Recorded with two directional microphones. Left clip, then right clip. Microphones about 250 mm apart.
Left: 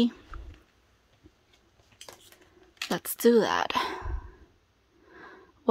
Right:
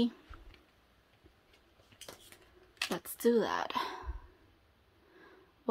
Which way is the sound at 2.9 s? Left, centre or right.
Left.